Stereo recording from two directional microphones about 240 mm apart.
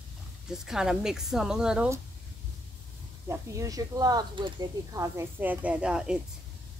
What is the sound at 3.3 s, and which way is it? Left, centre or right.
Speech, centre.